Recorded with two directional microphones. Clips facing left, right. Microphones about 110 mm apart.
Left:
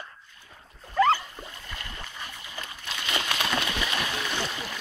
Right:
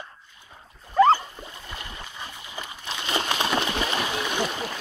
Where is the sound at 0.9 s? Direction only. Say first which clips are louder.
Right 5 dB; 30° right (ahead or behind).